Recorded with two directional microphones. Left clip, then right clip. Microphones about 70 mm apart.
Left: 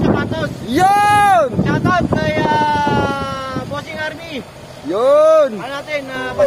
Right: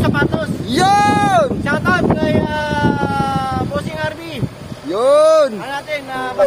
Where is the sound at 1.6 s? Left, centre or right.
Right.